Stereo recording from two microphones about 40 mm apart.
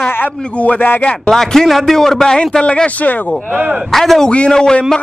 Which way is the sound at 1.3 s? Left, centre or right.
Centre.